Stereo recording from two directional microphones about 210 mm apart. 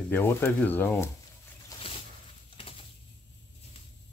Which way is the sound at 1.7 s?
25° left (ahead or behind).